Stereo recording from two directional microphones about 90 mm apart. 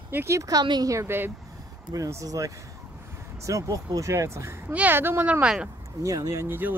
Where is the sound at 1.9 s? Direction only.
40° right (ahead or behind).